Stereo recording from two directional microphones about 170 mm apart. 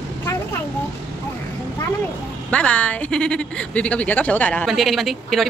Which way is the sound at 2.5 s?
5° left (ahead or behind).